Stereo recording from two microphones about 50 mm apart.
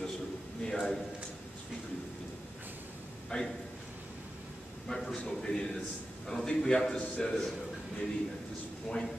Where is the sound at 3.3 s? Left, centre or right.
Left.